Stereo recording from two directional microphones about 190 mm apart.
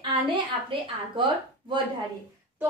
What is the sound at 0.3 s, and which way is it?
A woman's voice, 25° right (ahead or behind).